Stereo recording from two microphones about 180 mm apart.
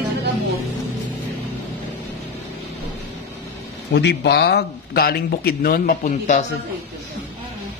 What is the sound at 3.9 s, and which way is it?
Speech, 70° left (ahead or behind).